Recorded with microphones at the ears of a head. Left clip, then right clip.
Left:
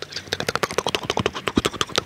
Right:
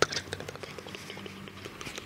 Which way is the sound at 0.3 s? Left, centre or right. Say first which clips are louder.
Left 16 dB; left.